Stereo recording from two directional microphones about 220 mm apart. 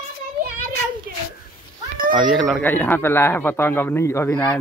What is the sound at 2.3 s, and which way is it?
A man's voice, centre (ahead or behind).